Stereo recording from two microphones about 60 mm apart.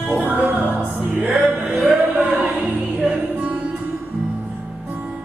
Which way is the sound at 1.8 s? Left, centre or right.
Centre.